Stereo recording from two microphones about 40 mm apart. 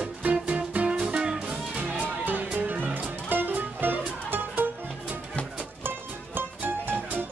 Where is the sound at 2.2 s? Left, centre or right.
Right.